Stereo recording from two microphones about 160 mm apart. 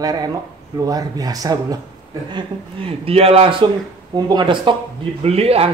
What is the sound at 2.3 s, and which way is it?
Speech, 35° right (ahead or behind).